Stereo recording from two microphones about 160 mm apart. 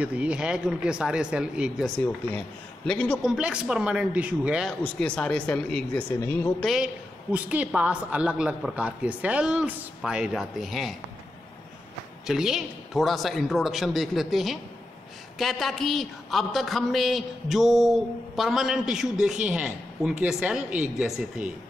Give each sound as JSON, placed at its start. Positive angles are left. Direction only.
{"t": 0.0, "sound": "a woman's voice", "side_deg": -10}
{"t": 2.0, "sound": "a woman's voice", "side_deg": 5}
{"t": 4.8, "sound": "speech", "side_deg": 5}
{"t": 6.7, "sound": "a woman's voice", "side_deg": -5}
{"t": 12.3, "sound": "a woman's voice", "side_deg": 0}